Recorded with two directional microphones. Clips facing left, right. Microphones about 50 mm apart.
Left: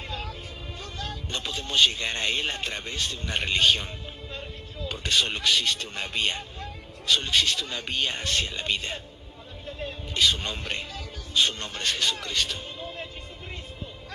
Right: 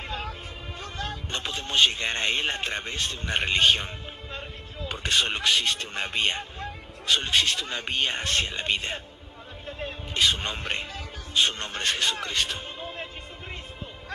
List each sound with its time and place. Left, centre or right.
0.9 s speech: right
9.7 s a sound: right
11.3 s a man's voice: right